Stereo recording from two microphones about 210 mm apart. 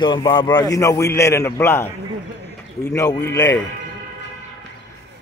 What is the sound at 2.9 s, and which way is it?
Speech, 15° left (ahead or behind).